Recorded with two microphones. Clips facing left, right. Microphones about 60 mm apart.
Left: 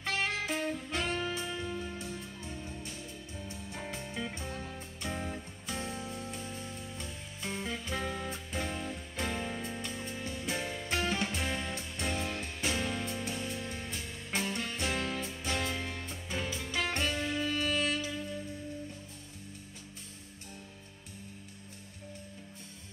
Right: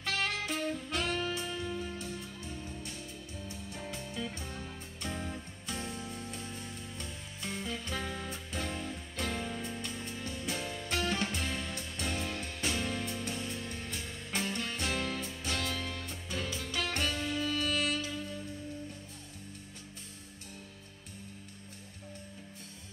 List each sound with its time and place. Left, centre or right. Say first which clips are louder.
0.0 s music: left 1 dB; left
0.9 s saxophone: even; left
1.4 s music: even; centre
5.0 s music: left 1 dB; centre
11.1 s music: left 1 dB; centre
11.4 s music: left 2 dB; left